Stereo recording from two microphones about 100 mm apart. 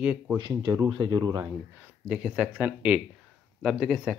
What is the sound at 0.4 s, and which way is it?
Speech, 50° right (ahead or behind).